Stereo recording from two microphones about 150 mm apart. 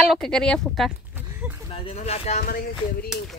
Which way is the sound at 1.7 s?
40° left (ahead or behind).